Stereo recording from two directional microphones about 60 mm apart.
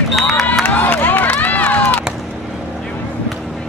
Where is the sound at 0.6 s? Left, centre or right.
Left.